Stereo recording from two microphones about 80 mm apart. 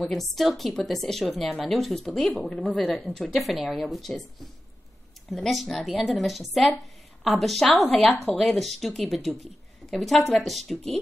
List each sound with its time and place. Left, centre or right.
0.0 s a woman's voice: centre
5.3 s a woman's voice: centre
8.5 s a woman's voice: centre